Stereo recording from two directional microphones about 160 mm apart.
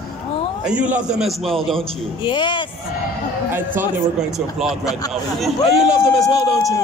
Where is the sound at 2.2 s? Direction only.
30° left (ahead or behind).